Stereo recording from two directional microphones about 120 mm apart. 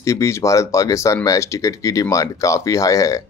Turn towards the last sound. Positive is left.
turn(degrees=30)  # may be behind; listen again after turning